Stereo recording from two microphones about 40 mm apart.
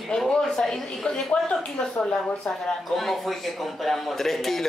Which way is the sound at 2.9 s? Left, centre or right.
Centre.